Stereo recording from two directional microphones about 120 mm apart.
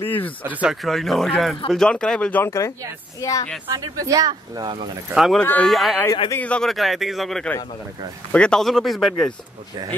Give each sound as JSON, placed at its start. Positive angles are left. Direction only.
{"t": 0.0, "sound": "a man's voice", "side_deg": 15}
{"t": 0.4, "sound": "speech", "side_deg": -15}
{"t": 0.8, "sound": "a man's voice", "side_deg": 0}
{"t": 2.4, "sound": "speech", "side_deg": 25}
{"t": 3.7, "sound": "speech", "side_deg": -30}
{"t": 5.1, "sound": "speech", "side_deg": 0}
{"t": 5.4, "sound": "a man's voice", "side_deg": 15}
{"t": 5.7, "sound": "speech", "side_deg": 0}